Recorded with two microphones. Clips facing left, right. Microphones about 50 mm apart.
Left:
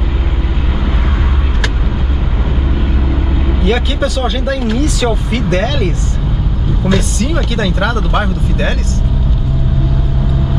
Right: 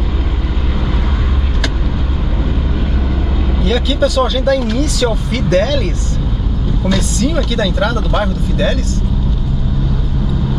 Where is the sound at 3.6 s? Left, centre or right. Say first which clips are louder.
Right 1 dB; left.